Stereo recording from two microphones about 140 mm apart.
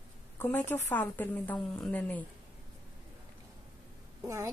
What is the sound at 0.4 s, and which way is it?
A woman's voice, 15° left (ahead or behind).